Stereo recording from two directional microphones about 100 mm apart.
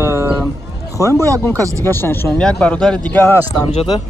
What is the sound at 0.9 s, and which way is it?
Speech, 30° left (ahead or behind).